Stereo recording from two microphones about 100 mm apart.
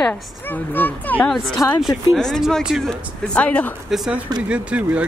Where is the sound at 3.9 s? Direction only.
Centre (ahead or behind).